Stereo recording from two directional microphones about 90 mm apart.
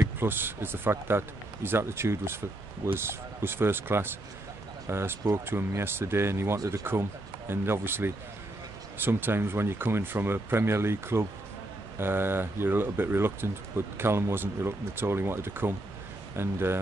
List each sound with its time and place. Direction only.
0.2 s speech: 25° right (ahead or behind)